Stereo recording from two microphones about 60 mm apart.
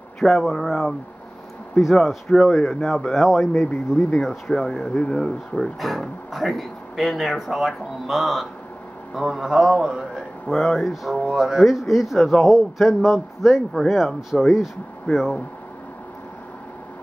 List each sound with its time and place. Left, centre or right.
0.2 s a man's voice: centre
4.5 s speech: centre
5.8 s a man's voice: centre
10.5 s a man's voice: centre